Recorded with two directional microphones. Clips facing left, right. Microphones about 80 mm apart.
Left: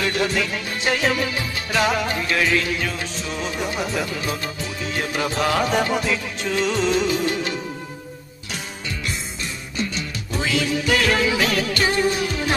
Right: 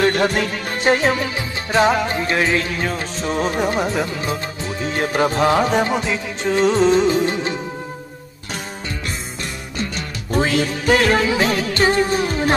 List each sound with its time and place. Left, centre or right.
0.0 s music: right
9.9 s music of bollywood: right